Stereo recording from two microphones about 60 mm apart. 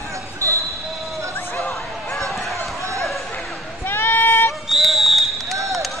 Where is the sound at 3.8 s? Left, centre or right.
Left.